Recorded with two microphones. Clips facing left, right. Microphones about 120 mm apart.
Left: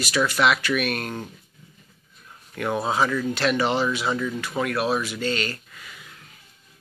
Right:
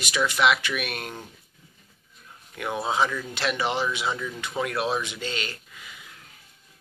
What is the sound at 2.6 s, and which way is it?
Speech, 10° right (ahead or behind).